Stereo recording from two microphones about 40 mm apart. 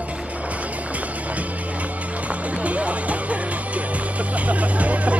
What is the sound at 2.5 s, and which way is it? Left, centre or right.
Music, right.